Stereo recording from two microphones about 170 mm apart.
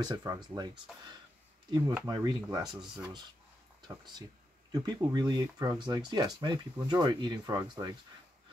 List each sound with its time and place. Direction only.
0.0 s speech: 25° right (ahead or behind)
2.0 s speech: 25° right (ahead or behind)